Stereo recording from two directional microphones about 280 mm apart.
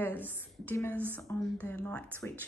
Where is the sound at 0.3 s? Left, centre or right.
Centre.